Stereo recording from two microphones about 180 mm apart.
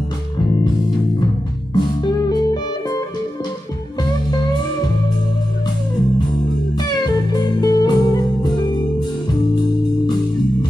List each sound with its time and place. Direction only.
1.7 s music: 20° left (ahead or behind)
6.8 s music: 25° left (ahead or behind)